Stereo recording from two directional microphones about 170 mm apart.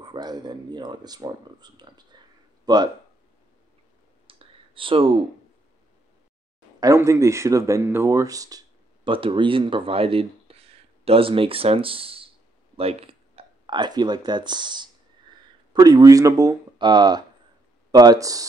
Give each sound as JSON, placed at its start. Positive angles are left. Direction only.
{"t": 0.0, "sound": "speech", "side_deg": -25}
{"t": 4.3, "sound": "clicking", "side_deg": -30}
{"t": 6.8, "sound": "speech", "side_deg": -20}